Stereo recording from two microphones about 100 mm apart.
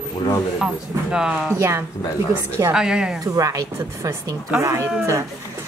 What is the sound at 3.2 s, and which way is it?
A woman's voice, 35° right (ahead or behind).